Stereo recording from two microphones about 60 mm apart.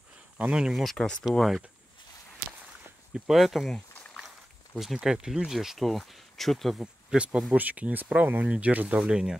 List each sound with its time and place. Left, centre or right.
0.4 s speech: centre
0.8 s speech: centre
3.1 s speech: centre
6.8 s speech: centre
7.5 s speech: right